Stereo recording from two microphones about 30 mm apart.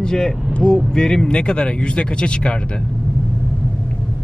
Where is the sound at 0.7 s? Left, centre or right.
Left.